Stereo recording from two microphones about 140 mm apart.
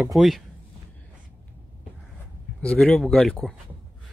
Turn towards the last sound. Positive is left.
turn(degrees=5)  # may be behind; listen again after turning